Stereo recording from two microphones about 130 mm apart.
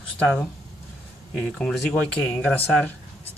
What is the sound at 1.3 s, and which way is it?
Speech, 5° left (ahead or behind).